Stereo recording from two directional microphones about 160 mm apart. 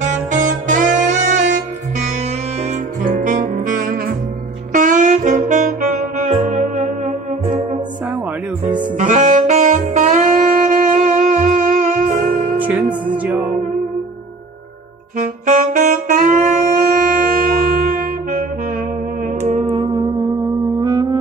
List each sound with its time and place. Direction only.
0.0 s saxophone: 50° right (ahead or behind)
3.0 s music: 50° right (ahead or behind)
4.7 s saxophone: 55° right (ahead or behind)
6.5 s music: 45° right (ahead or behind)
7.4 s music: 35° right (ahead or behind)
8.9 s saxophone: 50° right (ahead or behind)
12.5 s music: 10° right (ahead or behind)
15.1 s saxophone: 55° right (ahead or behind)
19.4 s music: 45° right (ahead or behind)
19.7 s music: 30° right (ahead or behind)